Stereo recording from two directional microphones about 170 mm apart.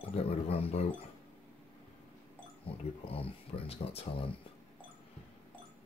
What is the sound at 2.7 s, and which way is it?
Speech, 35° left (ahead or behind).